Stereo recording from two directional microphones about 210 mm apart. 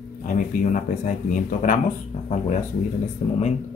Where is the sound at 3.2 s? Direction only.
30° left (ahead or behind).